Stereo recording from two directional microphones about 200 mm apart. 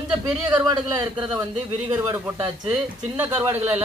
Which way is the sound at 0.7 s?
20° right (ahead or behind).